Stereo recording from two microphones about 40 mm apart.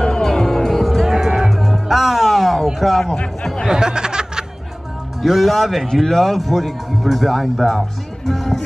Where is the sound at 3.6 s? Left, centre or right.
Centre.